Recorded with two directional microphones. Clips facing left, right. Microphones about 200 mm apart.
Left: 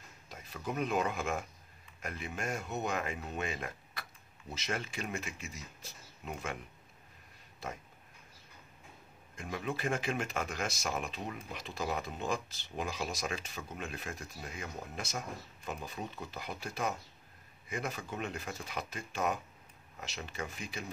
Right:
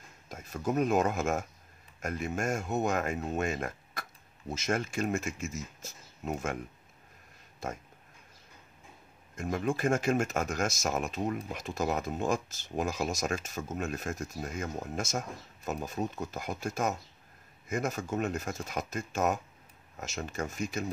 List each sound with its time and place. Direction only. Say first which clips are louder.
0.3 s speech: right 7 dB; 45° right (ahead or behind)
7.6 s speech: right 5 dB; 45° right (ahead or behind)
9.3 s speech: right 7 dB; 45° right (ahead or behind)